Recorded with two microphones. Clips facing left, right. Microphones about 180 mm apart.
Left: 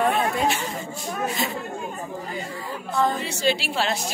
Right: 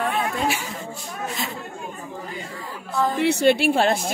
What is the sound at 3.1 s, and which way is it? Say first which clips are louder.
Speech: right 7 dB; 60° right (ahead or behind).